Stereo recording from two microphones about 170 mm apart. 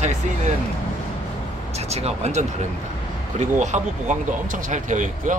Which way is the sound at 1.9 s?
40° right (ahead or behind).